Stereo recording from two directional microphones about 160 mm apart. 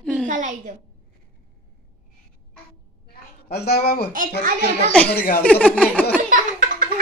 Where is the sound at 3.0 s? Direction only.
80° left.